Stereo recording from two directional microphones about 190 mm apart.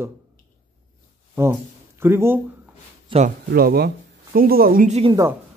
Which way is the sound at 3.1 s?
25° right (ahead or behind).